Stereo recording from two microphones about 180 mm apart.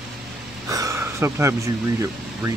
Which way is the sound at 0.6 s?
20° right (ahead or behind).